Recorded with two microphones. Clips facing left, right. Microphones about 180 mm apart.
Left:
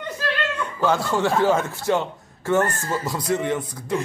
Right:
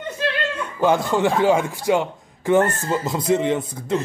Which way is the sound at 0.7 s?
20° right (ahead or behind).